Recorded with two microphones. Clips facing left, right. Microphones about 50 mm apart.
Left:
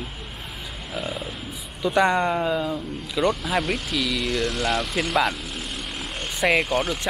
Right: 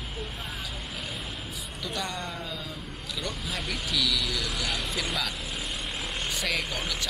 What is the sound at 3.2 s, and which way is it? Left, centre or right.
Speech, left.